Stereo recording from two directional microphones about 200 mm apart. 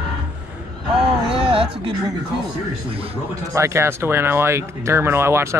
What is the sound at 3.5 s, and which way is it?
Speech, 15° right (ahead or behind).